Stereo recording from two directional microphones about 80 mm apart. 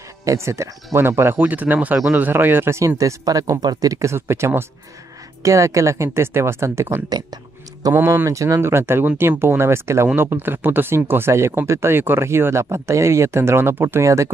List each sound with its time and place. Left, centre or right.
0.2 s speech: right
1.4 s speech: right
3.0 s speech: right
8.3 s speech: right
14.0 s speech: right